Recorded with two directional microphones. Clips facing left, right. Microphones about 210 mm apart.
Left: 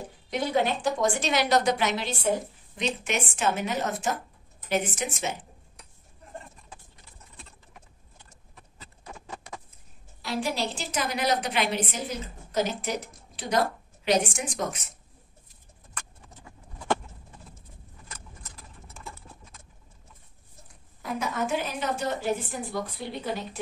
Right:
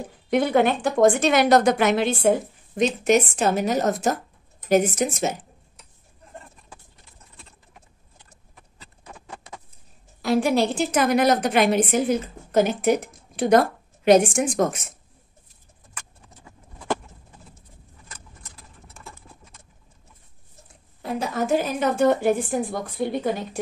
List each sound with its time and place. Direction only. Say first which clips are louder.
0.3 s a woman's voice: right 7 dB; 60° right (ahead or behind)
3.0 s a woman's voice: right 10 dB; 40° right (ahead or behind)
10.2 s a woman's voice: right 10 dB; 50° right (ahead or behind)
21.0 s a woman's voice: right 4 dB; 30° right (ahead or behind); by 23.6 s 50° right (ahead or behind)